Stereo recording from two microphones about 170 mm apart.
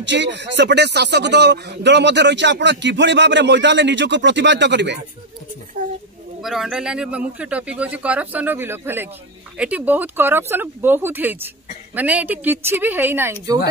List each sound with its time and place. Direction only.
0.0 s speech: 90° right
6.4 s a man's voice: centre (ahead or behind)